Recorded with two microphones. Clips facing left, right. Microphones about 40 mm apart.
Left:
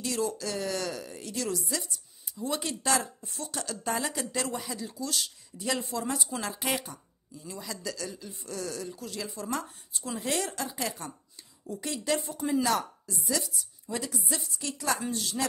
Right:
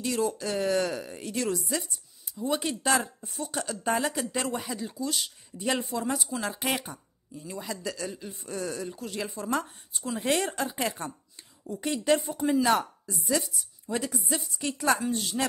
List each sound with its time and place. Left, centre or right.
0.0 s speech: centre
2.3 s speech: centre
6.1 s a woman's voice: centre
6.5 s speech: centre
14.2 s speech: centre
15.0 s speech: right